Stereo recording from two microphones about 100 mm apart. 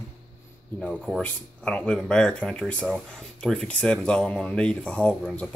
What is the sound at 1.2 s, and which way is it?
Speech, 10° left (ahead or behind).